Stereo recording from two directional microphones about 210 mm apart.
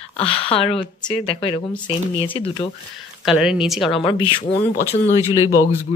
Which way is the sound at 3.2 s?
5° right (ahead or behind).